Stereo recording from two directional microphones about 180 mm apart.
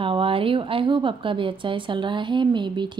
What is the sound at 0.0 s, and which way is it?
Speech, 30° right (ahead or behind).